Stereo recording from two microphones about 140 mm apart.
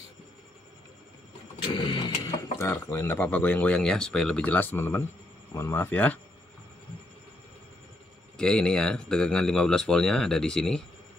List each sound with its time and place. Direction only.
1.7 s vehicle: 35° left (ahead or behind)
2.6 s speech: 15° left (ahead or behind)
8.4 s speech: 5° left (ahead or behind)